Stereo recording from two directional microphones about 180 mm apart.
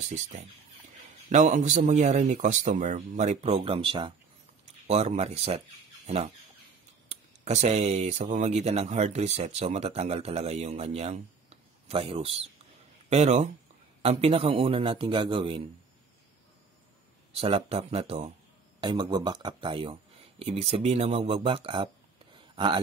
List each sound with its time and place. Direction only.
1.3 s speech: 45° right (ahead or behind)
6.0 s fowl: 35° right (ahead or behind)
7.1 s speech: 40° right (ahead or behind)
17.3 s speech: 35° right (ahead or behind)